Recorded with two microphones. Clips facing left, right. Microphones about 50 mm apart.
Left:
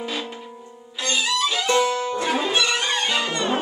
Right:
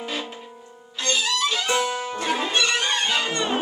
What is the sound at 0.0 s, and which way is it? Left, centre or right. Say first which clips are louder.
Music: left 1 dB; centre.